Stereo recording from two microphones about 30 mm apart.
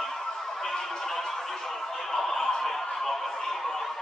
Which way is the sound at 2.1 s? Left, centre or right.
Centre.